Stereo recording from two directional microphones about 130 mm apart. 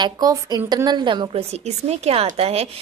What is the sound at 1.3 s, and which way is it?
Speech, 55° right (ahead or behind).